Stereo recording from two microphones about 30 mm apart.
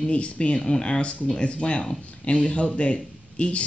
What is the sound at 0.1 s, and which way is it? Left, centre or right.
Speech, left.